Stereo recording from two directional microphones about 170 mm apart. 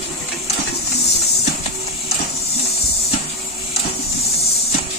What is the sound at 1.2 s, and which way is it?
Printer, 40° left (ahead or behind).